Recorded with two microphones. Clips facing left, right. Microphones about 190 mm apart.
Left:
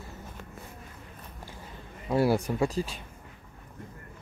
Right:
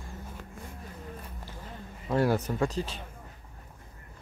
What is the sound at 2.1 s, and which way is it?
Speech, 10° left (ahead or behind).